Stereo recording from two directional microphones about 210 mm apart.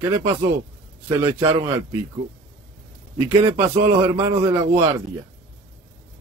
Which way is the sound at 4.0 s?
15° right (ahead or behind).